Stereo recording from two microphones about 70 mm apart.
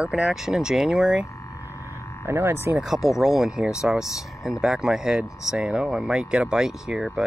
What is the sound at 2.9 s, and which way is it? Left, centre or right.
Speech, centre.